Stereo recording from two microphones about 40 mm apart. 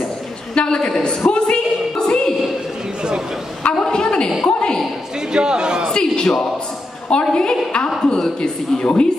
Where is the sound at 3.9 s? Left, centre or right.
Centre.